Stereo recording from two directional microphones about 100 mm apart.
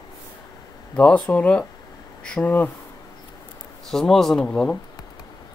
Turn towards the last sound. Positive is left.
turn(degrees=10)  # may be behind; listen again after turning